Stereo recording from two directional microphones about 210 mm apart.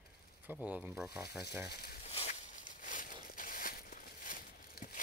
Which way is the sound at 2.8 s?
40° left (ahead or behind).